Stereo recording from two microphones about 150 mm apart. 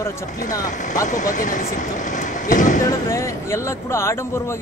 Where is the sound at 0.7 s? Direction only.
55° left (ahead or behind).